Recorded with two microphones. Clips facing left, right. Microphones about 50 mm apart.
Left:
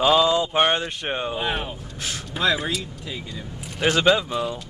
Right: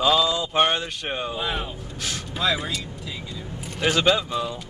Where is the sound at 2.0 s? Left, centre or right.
Centre.